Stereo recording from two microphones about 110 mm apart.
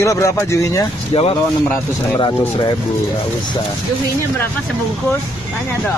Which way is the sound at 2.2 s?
45° left (ahead or behind).